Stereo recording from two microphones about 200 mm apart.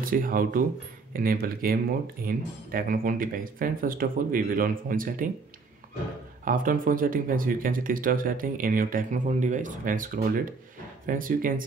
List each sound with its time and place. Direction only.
0.0 s speech: 45° right (ahead or behind)
6.4 s speech: 45° right (ahead or behind)